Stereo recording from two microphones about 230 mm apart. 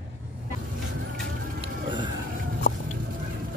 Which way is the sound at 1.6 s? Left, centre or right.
Centre.